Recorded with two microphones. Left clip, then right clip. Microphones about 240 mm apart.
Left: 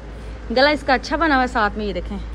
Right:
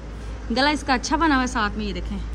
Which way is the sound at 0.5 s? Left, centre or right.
Centre.